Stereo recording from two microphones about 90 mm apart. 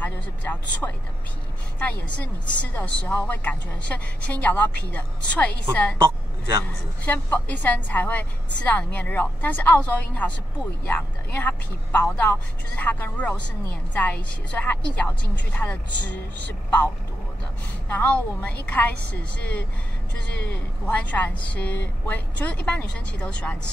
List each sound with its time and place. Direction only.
0.0 s speech: 20° left (ahead or behind)
7.1 s speech: 20° left (ahead or behind)